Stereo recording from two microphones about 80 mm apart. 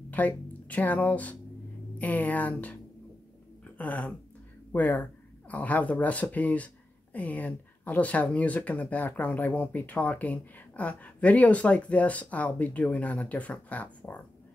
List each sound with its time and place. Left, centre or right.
0.2 s speech: left
3.6 s a sound: centre
4.7 s speech: left